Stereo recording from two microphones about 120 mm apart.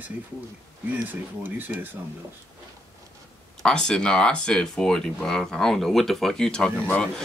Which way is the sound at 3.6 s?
5° left (ahead or behind).